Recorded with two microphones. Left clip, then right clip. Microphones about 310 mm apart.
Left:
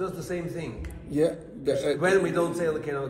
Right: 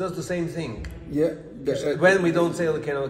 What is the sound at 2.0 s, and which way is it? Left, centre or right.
A man's voice, right.